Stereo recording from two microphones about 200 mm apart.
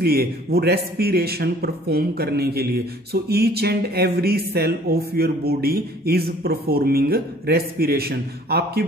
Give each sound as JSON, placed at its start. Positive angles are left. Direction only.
{"t": 0.0, "sound": "a man's voice", "side_deg": -50}